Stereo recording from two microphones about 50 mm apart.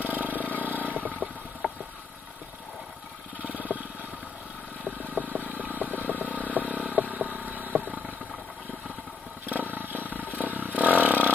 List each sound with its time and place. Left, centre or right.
0.0 s vehicle: right
3.3 s vehicle: right
4.8 s vehicle: right
6.0 s vehicle: left
6.5 s vehicle: right
9.5 s wild animals: right
10.2 s vehicle: right
10.8 s a sound: right